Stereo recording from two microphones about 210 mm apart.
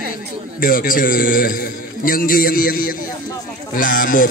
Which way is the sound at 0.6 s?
40° left (ahead or behind).